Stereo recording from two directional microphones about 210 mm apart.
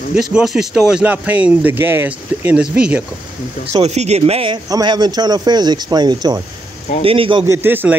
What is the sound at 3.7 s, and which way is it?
Speech, 30° right (ahead or behind).